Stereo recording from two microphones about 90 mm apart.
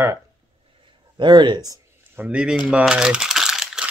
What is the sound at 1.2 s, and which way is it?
Speech, 60° right (ahead or behind).